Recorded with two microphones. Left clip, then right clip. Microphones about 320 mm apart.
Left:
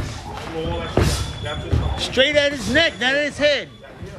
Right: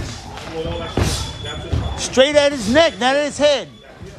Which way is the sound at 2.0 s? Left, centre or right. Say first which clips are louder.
Right 3 dB; centre.